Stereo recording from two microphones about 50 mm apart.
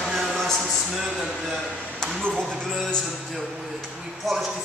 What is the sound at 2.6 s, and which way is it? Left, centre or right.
Music, centre.